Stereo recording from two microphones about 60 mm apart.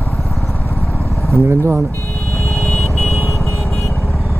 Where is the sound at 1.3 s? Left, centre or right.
Right.